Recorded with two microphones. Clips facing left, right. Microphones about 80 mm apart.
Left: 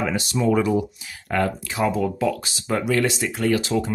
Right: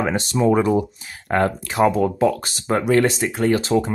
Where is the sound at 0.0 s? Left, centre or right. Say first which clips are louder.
Right 3 dB; right.